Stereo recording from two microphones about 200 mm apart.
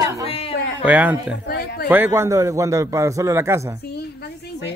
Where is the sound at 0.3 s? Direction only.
30° left (ahead or behind).